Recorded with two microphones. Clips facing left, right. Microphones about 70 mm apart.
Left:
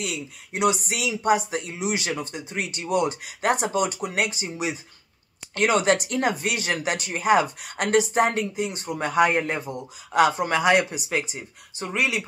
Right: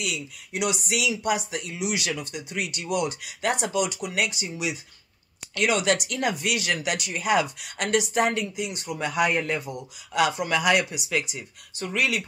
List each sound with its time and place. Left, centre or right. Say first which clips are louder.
0.0 s speech: even; left
11.8 s speech: left 1 dB; centre